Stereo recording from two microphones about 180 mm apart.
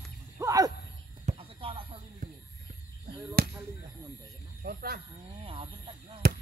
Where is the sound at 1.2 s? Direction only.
30° right (ahead or behind).